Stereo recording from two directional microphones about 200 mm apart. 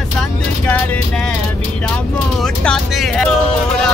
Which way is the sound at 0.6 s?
5° left (ahead or behind).